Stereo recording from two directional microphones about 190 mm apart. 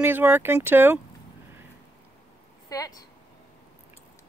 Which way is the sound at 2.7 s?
20° left (ahead or behind).